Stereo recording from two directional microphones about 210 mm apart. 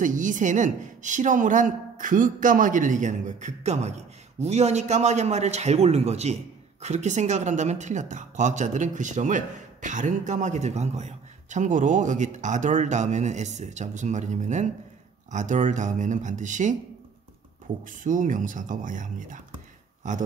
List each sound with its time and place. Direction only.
0.0 s speech: 35° right (ahead or behind)
17.8 s speech: 40° right (ahead or behind)